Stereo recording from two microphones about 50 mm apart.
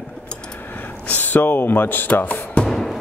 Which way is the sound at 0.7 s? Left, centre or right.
Left.